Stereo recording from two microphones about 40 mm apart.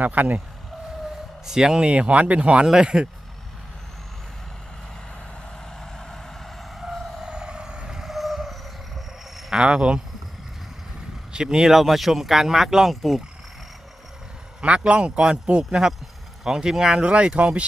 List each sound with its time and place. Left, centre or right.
0.0 s speech: right
1.4 s speech: centre; by 2.6 s right
2.6 s speech: centre
6.8 s vehicle: centre
7.2 s vehicle: right
8.0 s a sound: centre
9.5 s speech: centre
11.3 s speech: centre
11.7 s speech: centre
14.6 s speech: right
16.4 s speech: centre